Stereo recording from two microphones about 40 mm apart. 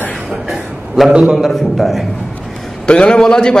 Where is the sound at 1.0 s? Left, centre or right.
Centre.